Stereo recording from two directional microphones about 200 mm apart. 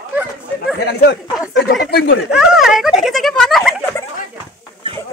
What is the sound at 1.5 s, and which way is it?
Speech, 55° left (ahead or behind).